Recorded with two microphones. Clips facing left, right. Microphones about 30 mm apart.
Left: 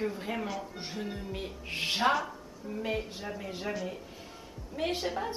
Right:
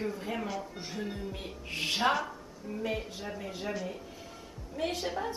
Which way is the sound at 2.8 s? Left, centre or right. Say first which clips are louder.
Left 1 dB; centre.